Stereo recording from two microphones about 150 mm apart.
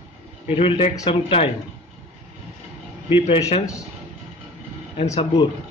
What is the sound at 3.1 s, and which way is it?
Speech, 40° left (ahead or behind).